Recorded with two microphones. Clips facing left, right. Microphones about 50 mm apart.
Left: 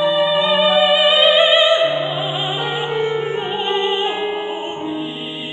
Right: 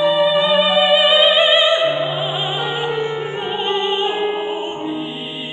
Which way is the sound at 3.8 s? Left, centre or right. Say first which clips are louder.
Right 1 dB; left.